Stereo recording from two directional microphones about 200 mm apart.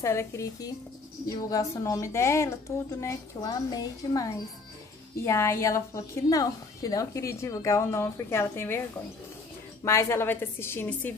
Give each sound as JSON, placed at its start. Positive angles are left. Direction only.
{"t": 0.0, "sound": "a woman's voice", "side_deg": 15}
{"t": 9.8, "sound": "a woman's voice", "side_deg": 15}